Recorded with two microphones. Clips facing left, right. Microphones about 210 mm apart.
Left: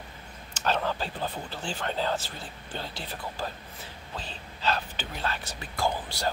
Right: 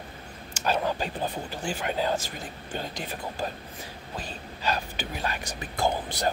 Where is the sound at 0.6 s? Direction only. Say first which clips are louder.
Right 2 dB; 10° right (ahead or behind).